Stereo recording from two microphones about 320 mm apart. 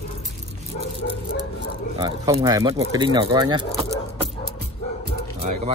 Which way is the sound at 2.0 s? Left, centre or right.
Centre.